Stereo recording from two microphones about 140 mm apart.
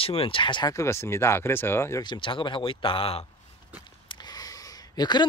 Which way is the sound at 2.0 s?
35° left (ahead or behind).